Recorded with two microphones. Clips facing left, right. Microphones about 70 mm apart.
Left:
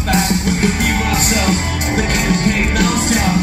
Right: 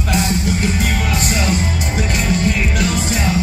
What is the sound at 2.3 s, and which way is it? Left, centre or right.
Music, left.